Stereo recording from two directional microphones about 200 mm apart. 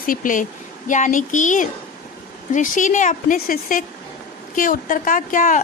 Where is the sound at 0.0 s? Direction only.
45° left (ahead or behind).